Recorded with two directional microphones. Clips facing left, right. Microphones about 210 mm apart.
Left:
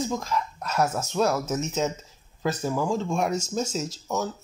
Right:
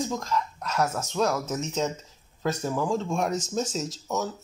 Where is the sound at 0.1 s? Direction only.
5° left (ahead or behind).